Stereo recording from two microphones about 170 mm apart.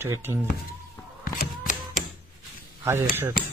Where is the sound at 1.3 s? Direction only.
50° left (ahead or behind).